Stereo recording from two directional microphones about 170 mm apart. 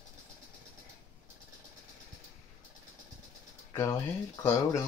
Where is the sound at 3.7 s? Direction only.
20° left (ahead or behind).